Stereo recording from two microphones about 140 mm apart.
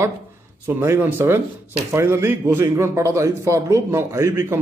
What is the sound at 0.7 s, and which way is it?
A man's voice, 15° right (ahead or behind).